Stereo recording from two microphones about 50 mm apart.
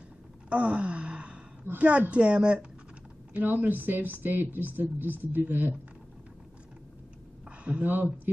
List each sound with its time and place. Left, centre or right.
0.5 s wail: right
1.8 s speech: right
3.3 s speech: right
7.4 s a sound: right
7.8 s speech: right